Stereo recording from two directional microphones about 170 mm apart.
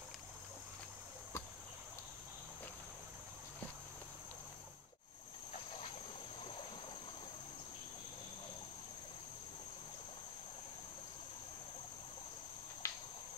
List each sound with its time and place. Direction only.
12.8 s cricket: 15° left (ahead or behind)